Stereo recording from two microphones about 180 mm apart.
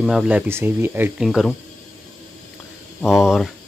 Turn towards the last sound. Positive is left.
turn(degrees=-5)  # may be behind; listen again after turning